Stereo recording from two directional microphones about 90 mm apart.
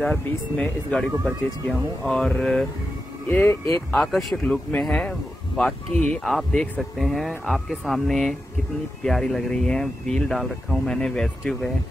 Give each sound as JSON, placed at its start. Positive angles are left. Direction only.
{"t": 0.0, "sound": "speech", "side_deg": 5}
{"t": 3.3, "sound": "speech", "side_deg": 20}
{"t": 3.9, "sound": "speech", "side_deg": 0}